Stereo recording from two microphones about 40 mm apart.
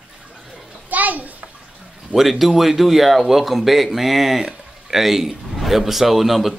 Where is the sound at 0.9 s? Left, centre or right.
Right.